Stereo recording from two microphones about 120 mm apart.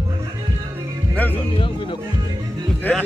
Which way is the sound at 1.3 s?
45° left (ahead or behind).